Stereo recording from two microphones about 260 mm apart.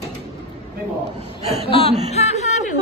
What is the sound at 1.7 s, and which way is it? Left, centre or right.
A woman's voice, left.